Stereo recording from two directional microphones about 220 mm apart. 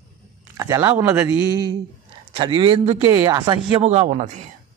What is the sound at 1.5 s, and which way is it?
Speech, 20° right (ahead or behind).